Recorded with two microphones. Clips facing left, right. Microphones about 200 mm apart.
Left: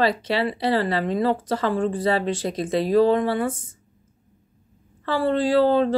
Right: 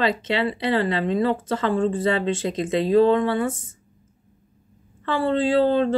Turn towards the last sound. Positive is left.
turn(degrees=-25)  # may be behind; listen again after turning